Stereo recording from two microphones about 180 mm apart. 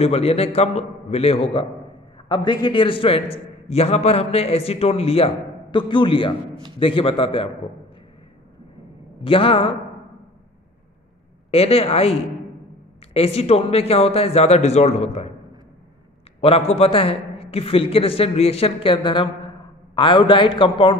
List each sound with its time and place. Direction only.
0.0 s a man's voice: 35° left (ahead or behind)
9.2 s a man's voice: 30° left (ahead or behind)
11.5 s a man's voice: 35° left (ahead or behind)
16.3 s a man's voice: 35° left (ahead or behind)